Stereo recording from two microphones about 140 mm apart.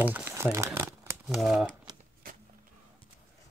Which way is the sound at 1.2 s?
Centre (ahead or behind).